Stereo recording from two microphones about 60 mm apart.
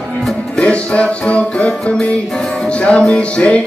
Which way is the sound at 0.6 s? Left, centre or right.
Centre.